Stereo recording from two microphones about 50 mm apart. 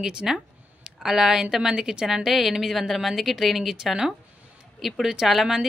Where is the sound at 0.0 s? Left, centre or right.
Centre.